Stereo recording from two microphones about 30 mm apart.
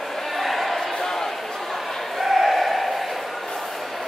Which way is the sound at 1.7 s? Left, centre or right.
Centre.